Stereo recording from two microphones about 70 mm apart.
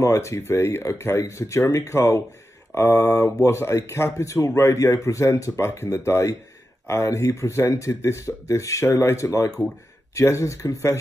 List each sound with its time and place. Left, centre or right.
0.0 s a man's voice: left